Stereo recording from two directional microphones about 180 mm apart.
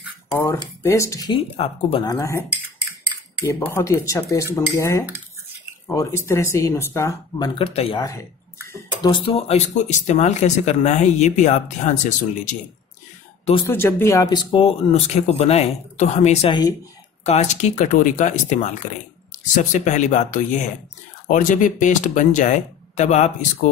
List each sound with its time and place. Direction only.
0.4 s speech: 15° left (ahead or behind)
3.4 s speech: 15° left (ahead or behind); by 8.0 s 35° left (ahead or behind)
8.6 s speech: 20° left (ahead or behind); by 12.5 s 45° left (ahead or behind)
13.7 s speech: 15° left (ahead or behind); by 23.7 s 40° left (ahead or behind)